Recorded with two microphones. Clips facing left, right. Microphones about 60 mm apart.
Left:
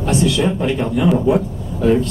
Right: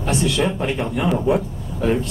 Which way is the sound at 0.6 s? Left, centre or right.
Right.